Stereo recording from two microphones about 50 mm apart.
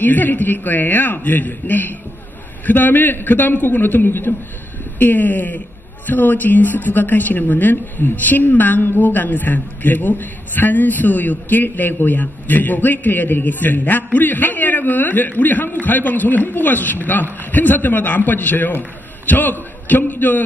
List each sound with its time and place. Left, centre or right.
0.0 s a woman's voice: left